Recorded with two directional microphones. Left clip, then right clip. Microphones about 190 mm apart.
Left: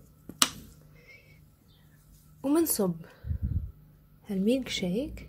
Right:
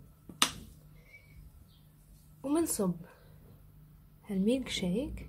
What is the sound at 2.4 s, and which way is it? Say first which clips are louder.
Speech: left 5 dB; 30° left (ahead or behind).